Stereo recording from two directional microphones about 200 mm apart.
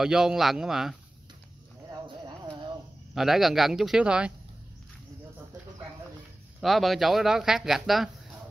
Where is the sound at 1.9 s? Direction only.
20° right (ahead or behind).